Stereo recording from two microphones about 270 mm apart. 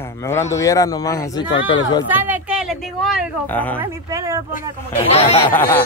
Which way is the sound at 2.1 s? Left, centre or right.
Centre.